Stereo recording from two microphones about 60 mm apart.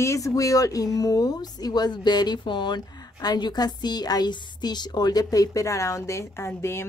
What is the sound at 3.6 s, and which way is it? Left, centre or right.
A woman's voice, left.